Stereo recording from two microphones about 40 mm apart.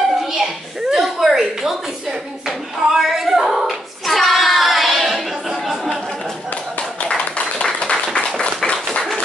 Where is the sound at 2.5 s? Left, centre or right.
Centre.